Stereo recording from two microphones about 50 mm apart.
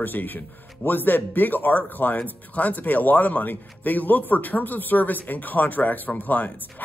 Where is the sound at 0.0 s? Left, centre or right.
Left.